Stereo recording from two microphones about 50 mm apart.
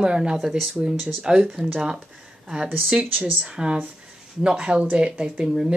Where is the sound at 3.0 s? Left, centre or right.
Right.